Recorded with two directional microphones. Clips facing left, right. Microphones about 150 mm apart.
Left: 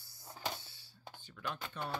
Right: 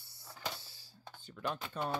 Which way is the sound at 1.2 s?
35° right (ahead or behind).